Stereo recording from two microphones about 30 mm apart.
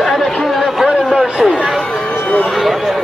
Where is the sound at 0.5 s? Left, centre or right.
Centre.